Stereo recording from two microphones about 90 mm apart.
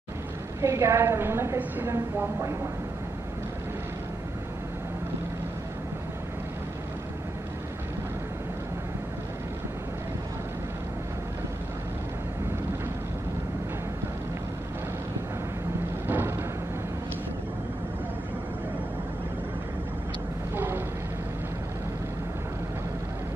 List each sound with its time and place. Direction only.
0.6 s speech: 30° right (ahead or behind)
16.1 s timpani: 25° right (ahead or behind)
20.5 s a sound: 20° right (ahead or behind)